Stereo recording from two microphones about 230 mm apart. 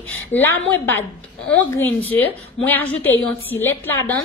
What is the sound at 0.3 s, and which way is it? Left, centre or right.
A woman's voice, centre.